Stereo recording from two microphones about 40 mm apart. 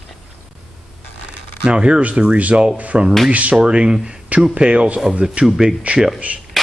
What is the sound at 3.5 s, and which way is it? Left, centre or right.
Speech, right.